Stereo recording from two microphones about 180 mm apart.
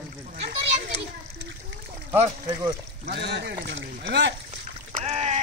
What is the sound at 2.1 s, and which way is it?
Speech, 20° right (ahead or behind).